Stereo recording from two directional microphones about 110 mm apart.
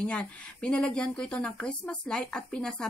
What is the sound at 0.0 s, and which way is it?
Speech, 10° left (ahead or behind).